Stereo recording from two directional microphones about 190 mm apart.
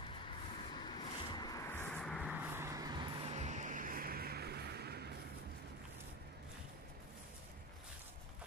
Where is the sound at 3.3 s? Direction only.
35° right (ahead or behind); by 5.1 s 55° right (ahead or behind).